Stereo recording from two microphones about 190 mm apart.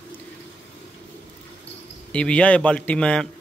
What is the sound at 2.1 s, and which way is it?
A man's voice, 5° left (ahead or behind).